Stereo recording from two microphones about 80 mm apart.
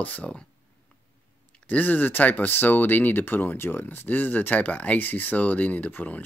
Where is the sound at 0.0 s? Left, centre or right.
Centre.